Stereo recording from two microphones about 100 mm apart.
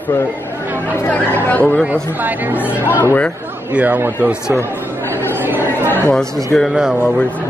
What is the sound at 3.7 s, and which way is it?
Speech, 15° right (ahead or behind).